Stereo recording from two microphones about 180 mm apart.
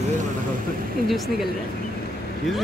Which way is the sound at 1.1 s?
Centre (ahead or behind).